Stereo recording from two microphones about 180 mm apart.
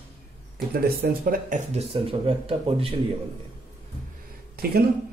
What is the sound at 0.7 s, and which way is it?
Speech, 55° right (ahead or behind).